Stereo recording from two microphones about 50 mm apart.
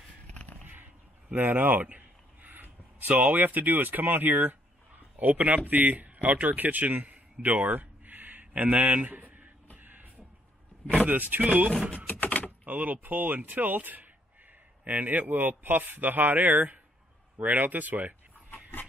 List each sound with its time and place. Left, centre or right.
0.3 s a sound: left
1.3 s a man's voice: right
9.8 s beatboxing: right
11.1 s speech: right
12.1 s a sound: left
12.6 s speech: right
18.5 s dog: left